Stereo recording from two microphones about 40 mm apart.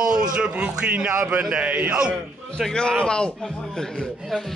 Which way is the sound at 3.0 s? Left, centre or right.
Left.